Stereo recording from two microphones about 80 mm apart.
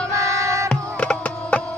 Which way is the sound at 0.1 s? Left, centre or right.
Right.